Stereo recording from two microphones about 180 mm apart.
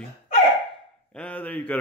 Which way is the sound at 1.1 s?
5° left (ahead or behind).